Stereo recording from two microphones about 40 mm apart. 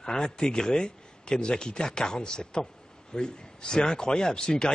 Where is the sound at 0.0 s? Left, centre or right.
Centre.